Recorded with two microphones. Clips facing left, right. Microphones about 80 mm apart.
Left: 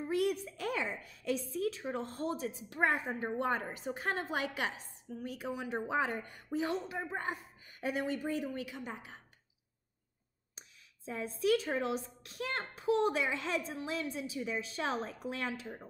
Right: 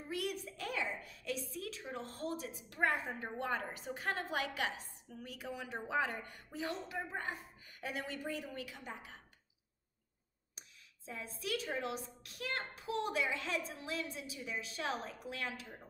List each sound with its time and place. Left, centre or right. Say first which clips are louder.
0.0 s a sound: left 8 dB; left
1.8 s a child's voice: left 6 dB; left
11.1 s a child's voice: left 10 dB; left